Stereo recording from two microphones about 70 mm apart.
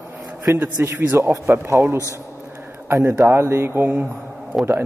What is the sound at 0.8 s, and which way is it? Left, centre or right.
A man's voice, right.